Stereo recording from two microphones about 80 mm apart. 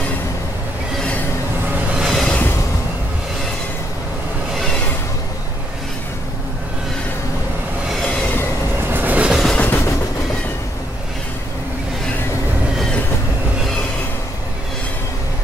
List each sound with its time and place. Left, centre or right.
2.0 s train: centre
8.2 s train: left
8.9 s train: right
9.3 s train: centre
9.6 s a sound: left